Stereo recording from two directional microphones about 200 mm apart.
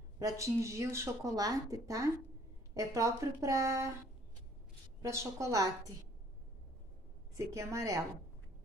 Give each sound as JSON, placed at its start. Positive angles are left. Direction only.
{"t": 0.2, "sound": "speech", "side_deg": -15}
{"t": 5.0, "sound": "speech", "side_deg": -15}
{"t": 7.3, "sound": "speech", "side_deg": -15}